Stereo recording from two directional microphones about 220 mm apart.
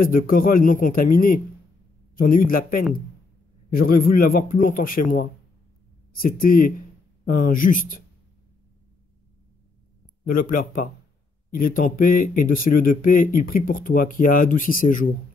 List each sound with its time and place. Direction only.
0.0 s speech: 40° left (ahead or behind)
10.2 s speech: 40° left (ahead or behind)